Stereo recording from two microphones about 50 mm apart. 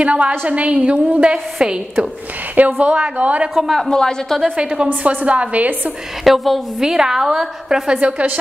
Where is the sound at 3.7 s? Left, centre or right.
Centre.